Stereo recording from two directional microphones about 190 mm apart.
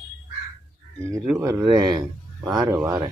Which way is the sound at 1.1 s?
15° right (ahead or behind).